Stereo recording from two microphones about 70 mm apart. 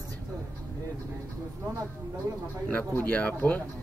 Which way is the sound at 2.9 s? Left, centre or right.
Left.